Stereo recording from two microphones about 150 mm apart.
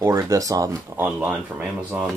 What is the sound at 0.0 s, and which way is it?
Speech, 20° right (ahead or behind).